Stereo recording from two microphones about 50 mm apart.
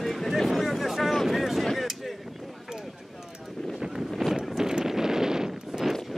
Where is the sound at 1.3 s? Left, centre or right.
Centre.